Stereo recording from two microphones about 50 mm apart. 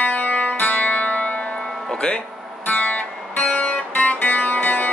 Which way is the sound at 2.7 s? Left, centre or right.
Left.